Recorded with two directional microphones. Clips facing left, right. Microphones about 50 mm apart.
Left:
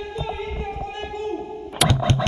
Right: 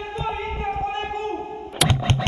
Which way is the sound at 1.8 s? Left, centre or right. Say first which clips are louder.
Left 2 dB; right.